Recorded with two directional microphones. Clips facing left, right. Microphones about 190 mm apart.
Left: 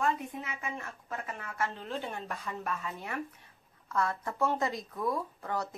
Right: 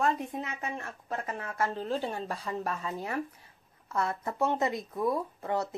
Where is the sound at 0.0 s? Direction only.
35° right (ahead or behind).